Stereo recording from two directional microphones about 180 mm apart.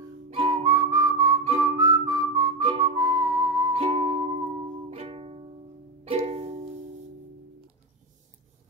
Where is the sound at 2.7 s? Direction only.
20° right (ahead or behind).